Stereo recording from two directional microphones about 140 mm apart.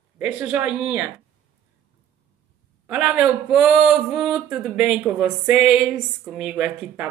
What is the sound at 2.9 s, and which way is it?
Speech, 10° right (ahead or behind).